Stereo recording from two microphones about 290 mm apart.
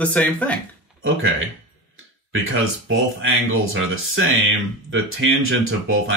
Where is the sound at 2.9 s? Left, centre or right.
Right.